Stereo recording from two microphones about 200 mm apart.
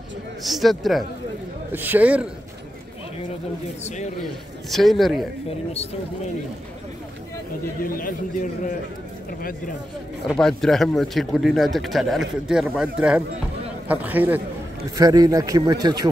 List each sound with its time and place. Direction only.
0.4 s a man's voice: centre (ahead or behind)
3.8 s a man's voice: 35° left (ahead or behind)
4.2 s speech: centre (ahead or behind)
7.8 s a man's voice: 45° left (ahead or behind)
10.2 s a man's voice: 5° left (ahead or behind); by 16.1 s 20° right (ahead or behind)